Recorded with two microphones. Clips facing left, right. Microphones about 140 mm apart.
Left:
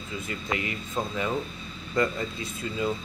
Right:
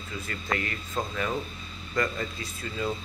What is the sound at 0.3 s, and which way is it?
Speech, 15° left (ahead or behind).